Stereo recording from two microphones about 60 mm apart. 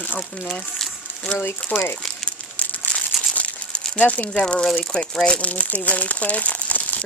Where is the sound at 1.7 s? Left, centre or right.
Left.